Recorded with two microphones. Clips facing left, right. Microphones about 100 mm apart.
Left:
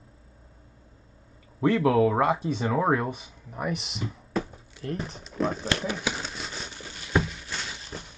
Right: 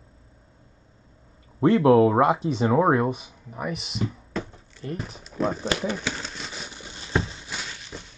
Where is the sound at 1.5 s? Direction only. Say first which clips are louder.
Right 5 dB; 20° right (ahead or behind).